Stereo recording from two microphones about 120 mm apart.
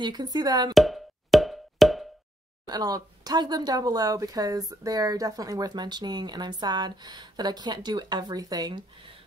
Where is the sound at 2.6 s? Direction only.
30° right (ahead or behind).